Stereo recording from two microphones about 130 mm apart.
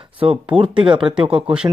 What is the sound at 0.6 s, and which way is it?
Speech, 40° right (ahead or behind).